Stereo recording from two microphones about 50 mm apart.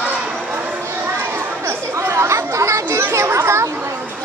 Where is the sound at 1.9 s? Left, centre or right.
Right.